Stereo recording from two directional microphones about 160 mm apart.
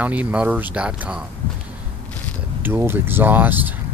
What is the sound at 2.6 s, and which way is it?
Speech, 15° right (ahead or behind).